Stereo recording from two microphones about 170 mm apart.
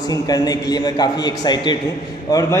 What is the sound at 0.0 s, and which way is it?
A man's voice, 20° left (ahead or behind).